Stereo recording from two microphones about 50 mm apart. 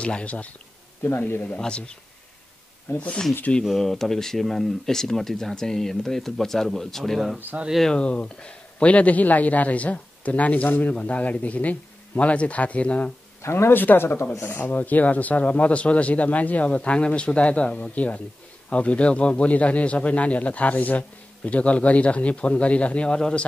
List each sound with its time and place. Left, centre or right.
0.0 s speech: left
1.0 s a man's voice: left
1.6 s speech: centre
2.9 s a man's voice: left
3.6 s speech: centre
7.5 s speech: right
7.9 s speech: left
13.4 s speech: left
14.4 s speech: left; by 23.4 s centre